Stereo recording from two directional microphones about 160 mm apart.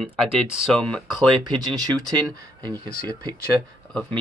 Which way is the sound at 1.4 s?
25° right (ahead or behind).